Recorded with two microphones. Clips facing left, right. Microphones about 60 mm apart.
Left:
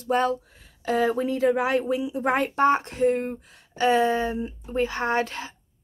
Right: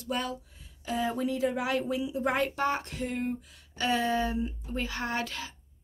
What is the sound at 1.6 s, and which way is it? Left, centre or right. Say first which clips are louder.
Speech: left 6 dB; left.